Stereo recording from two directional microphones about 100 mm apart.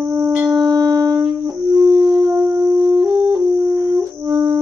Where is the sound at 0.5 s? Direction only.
35° right (ahead or behind).